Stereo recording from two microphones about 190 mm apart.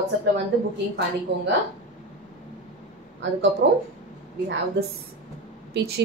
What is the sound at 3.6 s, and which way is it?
Speech, 60° right (ahead or behind).